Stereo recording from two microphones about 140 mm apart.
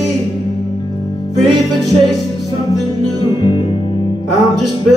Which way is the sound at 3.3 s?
35° left (ahead or behind).